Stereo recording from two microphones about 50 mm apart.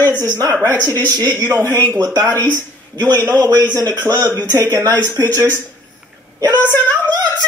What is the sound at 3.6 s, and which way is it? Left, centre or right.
Speech, left.